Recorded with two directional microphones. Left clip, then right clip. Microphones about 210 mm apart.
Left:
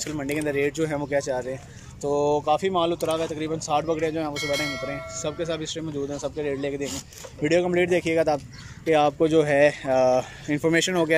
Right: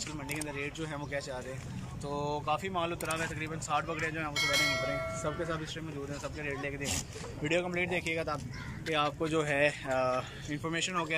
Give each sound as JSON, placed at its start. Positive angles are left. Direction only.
{"t": 0.0, "sound": "speech", "side_deg": 40}
{"t": 4.3, "sound": "speech", "side_deg": 0}
{"t": 5.1, "sound": "speech", "side_deg": 15}